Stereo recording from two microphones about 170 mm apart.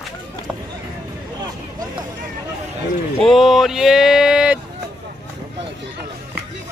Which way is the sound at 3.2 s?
Centre (ahead or behind).